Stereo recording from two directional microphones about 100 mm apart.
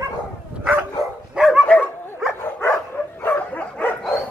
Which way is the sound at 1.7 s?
15° left (ahead or behind).